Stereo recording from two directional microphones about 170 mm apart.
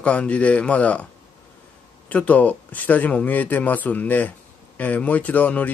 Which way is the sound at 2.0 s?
10° left (ahead or behind).